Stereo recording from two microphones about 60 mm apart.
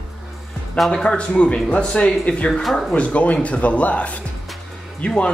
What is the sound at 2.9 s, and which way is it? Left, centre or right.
Speech, left.